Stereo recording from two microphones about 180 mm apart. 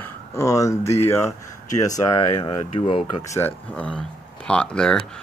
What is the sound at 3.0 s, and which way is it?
Speech, 15° left (ahead or behind).